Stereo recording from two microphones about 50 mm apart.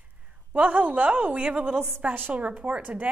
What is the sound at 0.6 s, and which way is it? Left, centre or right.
A woman's voice, right.